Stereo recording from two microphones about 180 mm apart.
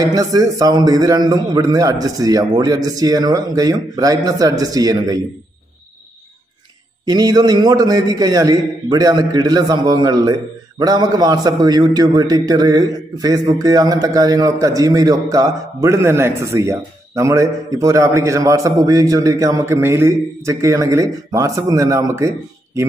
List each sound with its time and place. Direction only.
0.0 s a man's voice: 20° right (ahead or behind)
7.1 s a man's voice: 20° right (ahead or behind)